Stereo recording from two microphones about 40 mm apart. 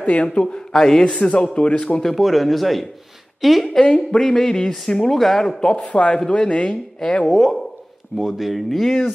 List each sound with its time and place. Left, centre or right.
0.0 s a man's voice: left
0.7 s a man's voice: centre
1.0 s a man's voice: left
2.1 s a woman's voice: centre
3.8 s a man's voice: left
4.2 s a man's voice: centre
5.6 s a man's voice: left
5.9 s a man's voice: left
6.1 s a man's voice: left
7.2 s speech: centre